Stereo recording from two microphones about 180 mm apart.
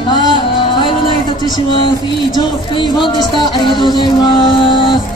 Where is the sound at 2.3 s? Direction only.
25° left (ahead or behind).